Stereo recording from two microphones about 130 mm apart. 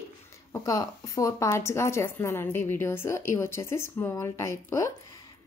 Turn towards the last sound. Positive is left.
turn(degrees=25)  # may be behind; listen again after turning